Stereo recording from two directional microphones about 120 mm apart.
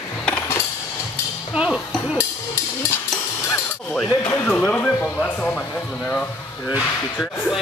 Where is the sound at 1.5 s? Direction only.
10° right (ahead or behind).